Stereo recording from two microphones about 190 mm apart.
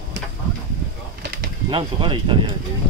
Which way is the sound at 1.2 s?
60° right (ahead or behind).